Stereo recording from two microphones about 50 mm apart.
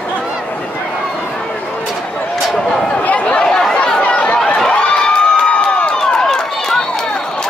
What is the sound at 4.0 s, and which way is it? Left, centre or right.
Chatter, left.